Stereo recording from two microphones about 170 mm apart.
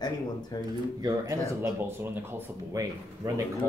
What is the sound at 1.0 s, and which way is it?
Speech, 15° right (ahead or behind).